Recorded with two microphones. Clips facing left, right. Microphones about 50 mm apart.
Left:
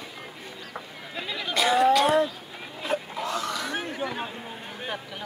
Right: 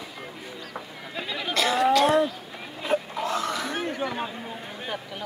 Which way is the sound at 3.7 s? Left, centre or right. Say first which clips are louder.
Right 2 dB; centre.